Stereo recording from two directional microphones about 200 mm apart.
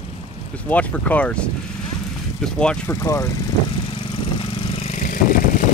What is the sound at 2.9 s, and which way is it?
Speech, 15° left (ahead or behind).